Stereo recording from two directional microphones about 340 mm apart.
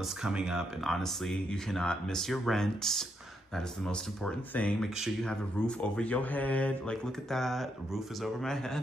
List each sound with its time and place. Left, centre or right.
0.2 s speech: centre